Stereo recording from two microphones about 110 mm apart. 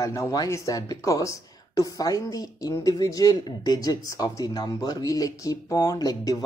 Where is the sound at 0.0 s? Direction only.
30° left (ahead or behind).